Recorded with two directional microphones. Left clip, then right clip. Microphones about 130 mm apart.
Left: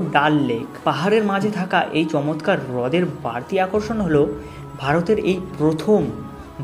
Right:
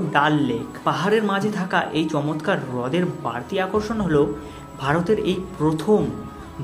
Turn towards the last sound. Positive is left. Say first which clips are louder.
# left 2 dB
turn(degrees=15)  # may be behind; listen again after turning